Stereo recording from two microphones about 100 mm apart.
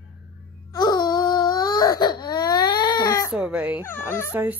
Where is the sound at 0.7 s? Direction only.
45° left (ahead or behind).